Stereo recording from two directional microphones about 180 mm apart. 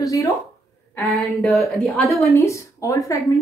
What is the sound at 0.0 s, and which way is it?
Speech, 20° left (ahead or behind).